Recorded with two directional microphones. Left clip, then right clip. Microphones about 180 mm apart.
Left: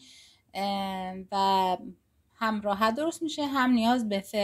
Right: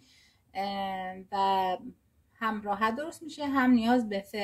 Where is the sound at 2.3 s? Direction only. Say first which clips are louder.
Left 3 dB; 40° left (ahead or behind).